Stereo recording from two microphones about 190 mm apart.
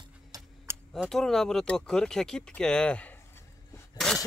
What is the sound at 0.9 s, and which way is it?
Speech, centre (ahead or behind).